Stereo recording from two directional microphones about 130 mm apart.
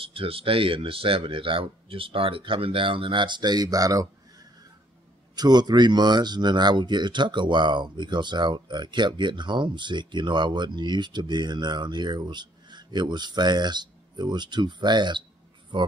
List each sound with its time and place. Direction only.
0.0 s speech: 45° right (ahead or behind)